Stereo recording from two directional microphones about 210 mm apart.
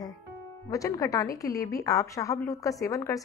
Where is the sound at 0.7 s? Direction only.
15° left (ahead or behind).